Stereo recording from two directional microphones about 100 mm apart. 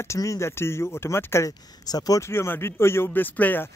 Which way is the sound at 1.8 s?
40° left (ahead or behind).